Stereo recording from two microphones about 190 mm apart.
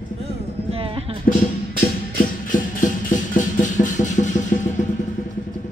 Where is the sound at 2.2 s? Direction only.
45° left (ahead or behind).